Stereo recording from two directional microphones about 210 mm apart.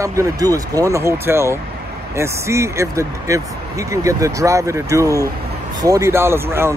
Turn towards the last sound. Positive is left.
turn(degrees=-10)  # may be behind; listen again after turning